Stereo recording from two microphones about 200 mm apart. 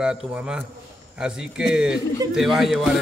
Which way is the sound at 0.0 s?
5° right (ahead or behind).